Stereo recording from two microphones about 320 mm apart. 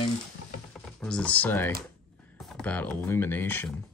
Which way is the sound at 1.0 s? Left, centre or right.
Centre.